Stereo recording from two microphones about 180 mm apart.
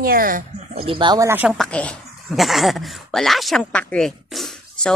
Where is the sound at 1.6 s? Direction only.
5° left (ahead or behind).